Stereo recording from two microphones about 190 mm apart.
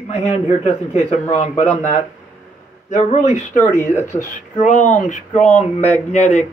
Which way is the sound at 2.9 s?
40° left (ahead or behind).